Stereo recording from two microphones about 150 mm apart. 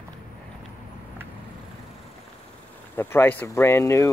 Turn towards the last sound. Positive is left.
turn(degrees=20)  # may be behind; listen again after turning